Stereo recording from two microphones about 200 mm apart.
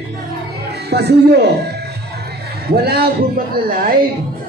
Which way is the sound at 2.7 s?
50° right (ahead or behind).